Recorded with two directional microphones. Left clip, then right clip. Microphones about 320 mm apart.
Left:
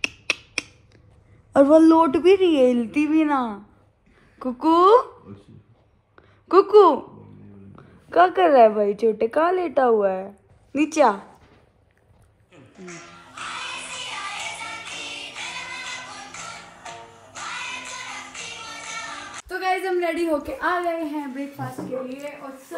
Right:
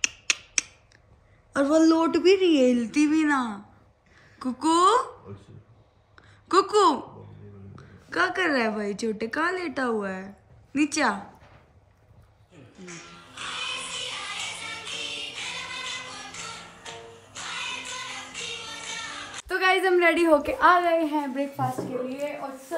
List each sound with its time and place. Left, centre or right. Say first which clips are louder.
1.5 s a woman's voice: left 7 dB; centre
6.1 s a sound: left 5 dB; centre
7.7 s a woman's voice: left 9 dB; centre
12.7 s music: left 3 dB; centre
20.8 s a woman's voice: right 3 dB; centre